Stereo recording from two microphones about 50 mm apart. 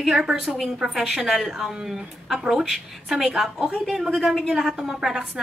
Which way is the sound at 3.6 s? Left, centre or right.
Centre.